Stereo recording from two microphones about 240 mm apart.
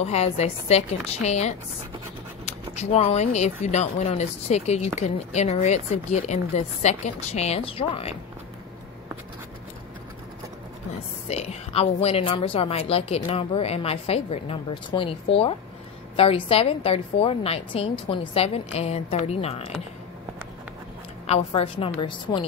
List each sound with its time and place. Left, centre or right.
0.0 s a woman's voice: left
2.7 s a woman's voice: left
11.2 s a woman's voice: left
21.3 s a woman's voice: left